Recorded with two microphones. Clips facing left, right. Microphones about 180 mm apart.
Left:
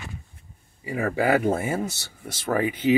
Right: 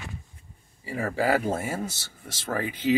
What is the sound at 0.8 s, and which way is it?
Speech, 15° left (ahead or behind).